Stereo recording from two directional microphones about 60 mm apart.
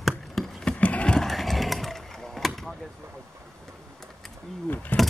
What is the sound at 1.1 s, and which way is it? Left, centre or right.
Vehicle, centre.